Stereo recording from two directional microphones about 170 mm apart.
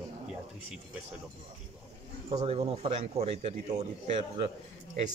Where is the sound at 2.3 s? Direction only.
35° right (ahead or behind).